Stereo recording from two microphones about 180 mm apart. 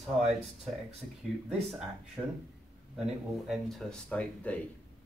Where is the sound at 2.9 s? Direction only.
5° right (ahead or behind).